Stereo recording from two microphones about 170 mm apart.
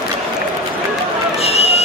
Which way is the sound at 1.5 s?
35° left (ahead or behind).